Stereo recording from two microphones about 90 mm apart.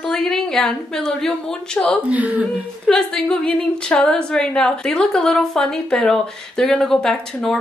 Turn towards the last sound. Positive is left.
turn(degrees=5)  # may be behind; listen again after turning